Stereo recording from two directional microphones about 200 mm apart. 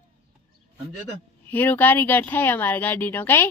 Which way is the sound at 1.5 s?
10° left (ahead or behind).